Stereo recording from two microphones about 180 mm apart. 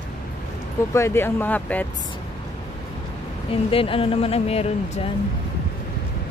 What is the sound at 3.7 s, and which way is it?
Speech, 30° left (ahead or behind).